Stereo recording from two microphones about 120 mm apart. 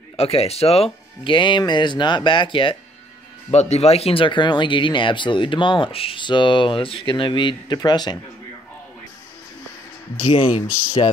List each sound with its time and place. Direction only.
0.2 s speech: 55° left (ahead or behind)
3.5 s speech: 65° left (ahead or behind); by 8.2 s 35° left (ahead or behind)
10.2 s speech: 45° left (ahead or behind)